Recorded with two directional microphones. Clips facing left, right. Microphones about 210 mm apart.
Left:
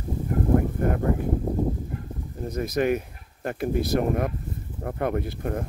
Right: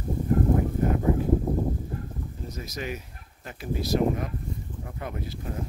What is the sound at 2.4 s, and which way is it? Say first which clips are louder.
Speech: left 12 dB; 55° left (ahead or behind).